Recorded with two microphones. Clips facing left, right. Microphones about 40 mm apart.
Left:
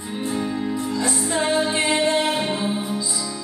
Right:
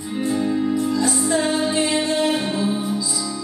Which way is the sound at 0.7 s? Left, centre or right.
Left.